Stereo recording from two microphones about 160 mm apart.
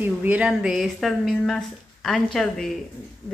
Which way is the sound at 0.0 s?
10° right (ahead or behind).